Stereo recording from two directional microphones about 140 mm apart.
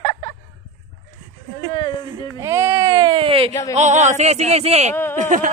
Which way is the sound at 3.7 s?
55° right (ahead or behind).